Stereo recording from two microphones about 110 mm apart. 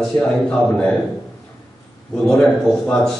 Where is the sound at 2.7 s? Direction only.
5° left (ahead or behind).